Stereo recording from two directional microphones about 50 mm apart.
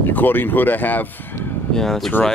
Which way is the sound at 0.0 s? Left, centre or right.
Left.